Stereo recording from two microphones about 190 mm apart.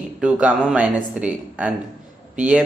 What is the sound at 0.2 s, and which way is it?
Speech, 5° right (ahead or behind).